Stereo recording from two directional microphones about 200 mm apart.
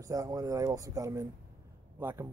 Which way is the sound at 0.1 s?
15° right (ahead or behind).